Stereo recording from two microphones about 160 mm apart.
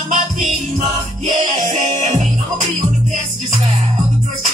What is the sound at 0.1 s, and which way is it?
Music, 50° right (ahead or behind).